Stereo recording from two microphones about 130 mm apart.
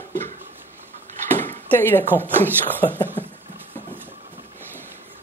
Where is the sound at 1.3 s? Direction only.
15° left (ahead or behind).